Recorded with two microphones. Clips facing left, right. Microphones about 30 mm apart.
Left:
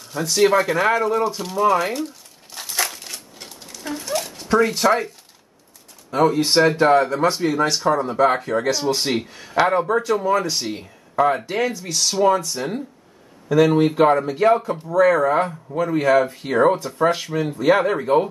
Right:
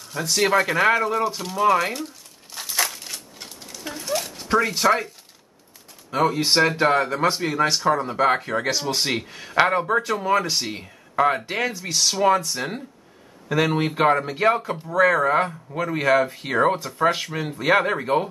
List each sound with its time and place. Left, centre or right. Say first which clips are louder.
0.0 s a sound: left 4 dB; centre
4.5 s speech: left 2 dB; centre
12.6 s speech: left 2 dB; right
13.5 s speech: left 6 dB; centre